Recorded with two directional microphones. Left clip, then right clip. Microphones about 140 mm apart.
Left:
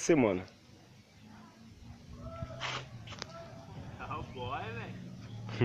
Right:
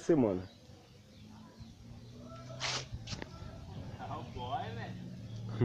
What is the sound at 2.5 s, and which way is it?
Cat, 70° left (ahead or behind).